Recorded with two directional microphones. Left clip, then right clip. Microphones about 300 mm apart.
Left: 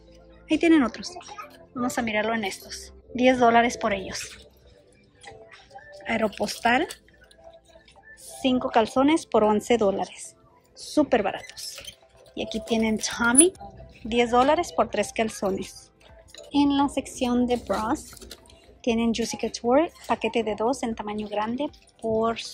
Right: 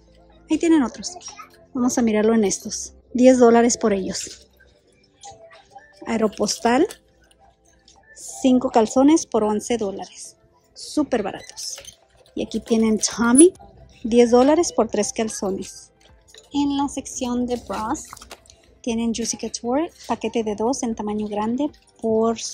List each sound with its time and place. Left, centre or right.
0.5 s a woman's voice: centre
6.0 s speech: centre
8.3 s speech: centre